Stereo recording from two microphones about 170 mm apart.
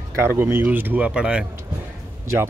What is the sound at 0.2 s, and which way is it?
Speech, 15° right (ahead or behind).